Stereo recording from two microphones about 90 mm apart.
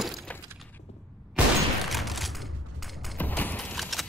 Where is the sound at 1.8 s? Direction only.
Centre (ahead or behind).